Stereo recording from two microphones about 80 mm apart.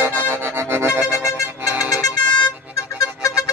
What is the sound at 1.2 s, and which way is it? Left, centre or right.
Music, left.